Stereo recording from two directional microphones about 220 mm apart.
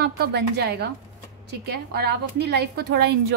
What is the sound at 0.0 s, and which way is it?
A woman's voice, 50° right (ahead or behind).